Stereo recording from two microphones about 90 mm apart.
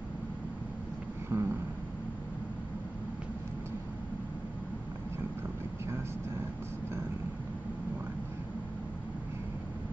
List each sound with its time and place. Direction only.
1.3 s vehicle: 25° right (ahead or behind)